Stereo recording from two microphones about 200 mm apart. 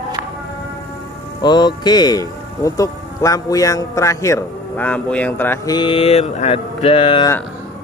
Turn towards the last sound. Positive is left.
turn(degrees=25)  # may be behind; listen again after turning